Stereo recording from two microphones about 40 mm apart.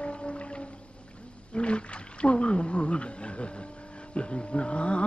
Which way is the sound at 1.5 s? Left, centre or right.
Left.